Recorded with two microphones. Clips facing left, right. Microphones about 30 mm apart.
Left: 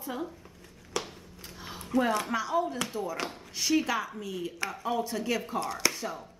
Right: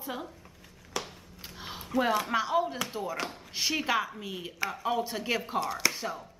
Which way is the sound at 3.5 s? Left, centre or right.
Right.